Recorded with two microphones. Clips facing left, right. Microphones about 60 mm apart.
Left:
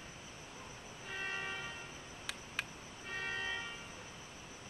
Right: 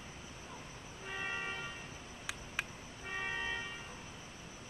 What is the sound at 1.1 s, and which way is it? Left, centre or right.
Music, centre.